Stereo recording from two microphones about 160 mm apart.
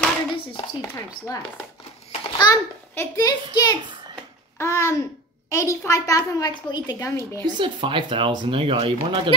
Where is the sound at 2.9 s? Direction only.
20° left (ahead or behind).